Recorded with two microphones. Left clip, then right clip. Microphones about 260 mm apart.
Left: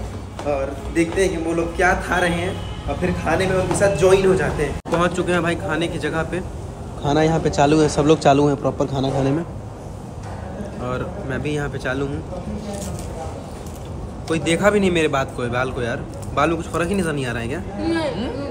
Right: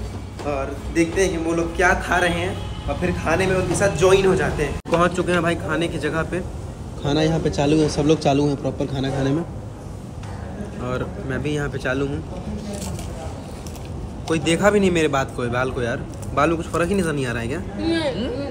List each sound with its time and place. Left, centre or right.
0.5 s a man's voice: centre
10.8 s a man's voice: centre
14.3 s a man's voice: centre